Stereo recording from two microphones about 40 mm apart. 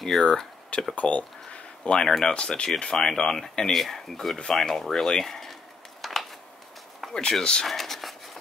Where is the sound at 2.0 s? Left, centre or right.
Centre.